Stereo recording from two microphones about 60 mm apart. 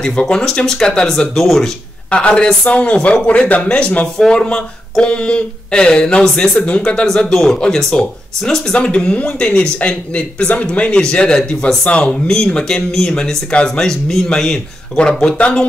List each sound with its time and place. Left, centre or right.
0.0 s speech: centre
2.0 s a man's voice: centre